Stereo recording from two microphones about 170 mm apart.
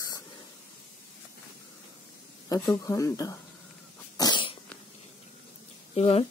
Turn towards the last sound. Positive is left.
turn(degrees=40)  # may be behind; listen again after turning